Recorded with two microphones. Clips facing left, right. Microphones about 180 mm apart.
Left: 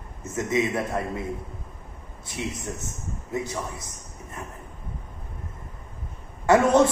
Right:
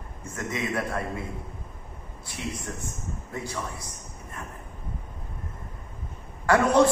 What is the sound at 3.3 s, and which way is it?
Speech, 20° left (ahead or behind).